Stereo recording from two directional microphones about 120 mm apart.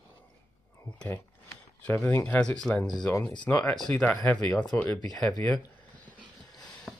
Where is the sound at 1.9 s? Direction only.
20° left (ahead or behind).